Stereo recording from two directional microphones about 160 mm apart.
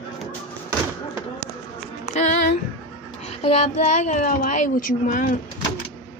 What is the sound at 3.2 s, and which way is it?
Speech, 45° left (ahead or behind).